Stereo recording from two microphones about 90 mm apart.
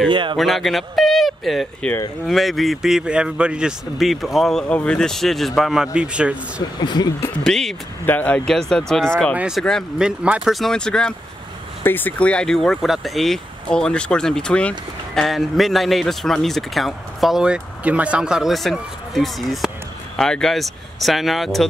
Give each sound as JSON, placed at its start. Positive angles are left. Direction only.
{"t": 0.1, "sound": "speech", "side_deg": -65}
{"t": 0.4, "sound": "speech", "side_deg": 0}
{"t": 6.8, "sound": "speech", "side_deg": 55}
{"t": 7.4, "sound": "speech", "side_deg": 5}
{"t": 8.0, "sound": "speech", "side_deg": 20}
{"t": 8.5, "sound": "speech", "side_deg": 5}
{"t": 9.3, "sound": "speech", "side_deg": -15}
{"t": 9.6, "sound": "speech", "side_deg": 5}
{"t": 9.9, "sound": "speech", "side_deg": -10}
{"t": 10.5, "sound": "speech", "side_deg": 5}
{"t": 11.8, "sound": "speech", "side_deg": 20}
{"t": 15.2, "sound": "speech", "side_deg": 0}